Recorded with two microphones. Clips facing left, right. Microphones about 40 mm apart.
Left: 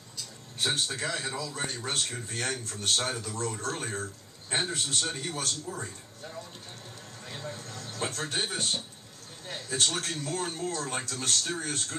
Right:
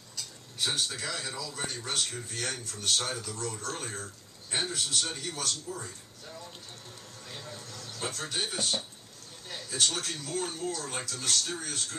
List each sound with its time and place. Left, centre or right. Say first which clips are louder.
0.6 s speech: left 2 dB; left
7.2 s speech: left 4 dB; left